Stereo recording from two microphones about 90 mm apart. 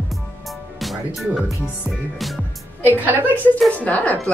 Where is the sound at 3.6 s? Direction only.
15° left (ahead or behind).